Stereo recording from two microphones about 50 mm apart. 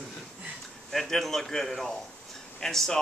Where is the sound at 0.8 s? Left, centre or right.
Centre.